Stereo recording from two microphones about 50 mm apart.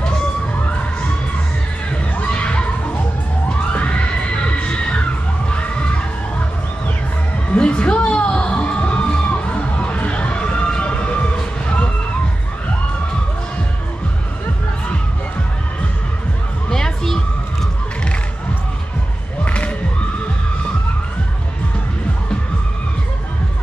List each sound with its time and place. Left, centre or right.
1.9 s crowd: left
3.7 s music: left
5.5 s a sound: left
7.5 s music: left
8.1 s crowd: centre
16.7 s a sound: centre
19.4 s music: left